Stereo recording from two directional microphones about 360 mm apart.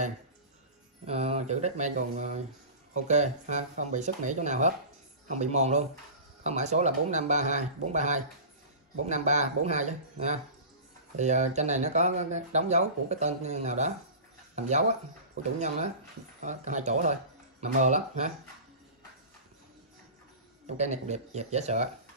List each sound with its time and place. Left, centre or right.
1.0 s speech: centre
16.3 s speech: centre
20.6 s speech: centre